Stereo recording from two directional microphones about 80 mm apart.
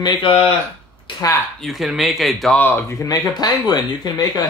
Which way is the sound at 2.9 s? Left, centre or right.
Left.